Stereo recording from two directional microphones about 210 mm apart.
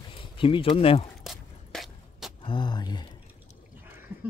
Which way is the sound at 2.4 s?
20° left (ahead or behind).